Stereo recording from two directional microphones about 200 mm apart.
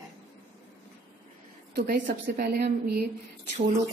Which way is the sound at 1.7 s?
45° right (ahead or behind).